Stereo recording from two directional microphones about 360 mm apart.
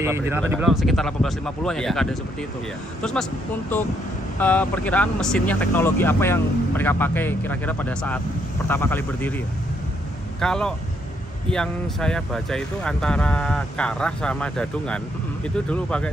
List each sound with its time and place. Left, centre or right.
0.0 s speech: centre
4.4 s speech: centre
10.4 s speech: centre